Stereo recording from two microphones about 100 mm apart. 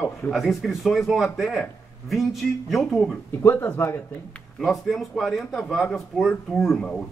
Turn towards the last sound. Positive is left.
turn(degrees=5)  # may be behind; listen again after turning